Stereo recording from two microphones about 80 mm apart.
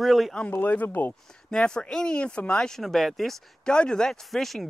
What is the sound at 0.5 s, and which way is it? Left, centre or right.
Speech, left.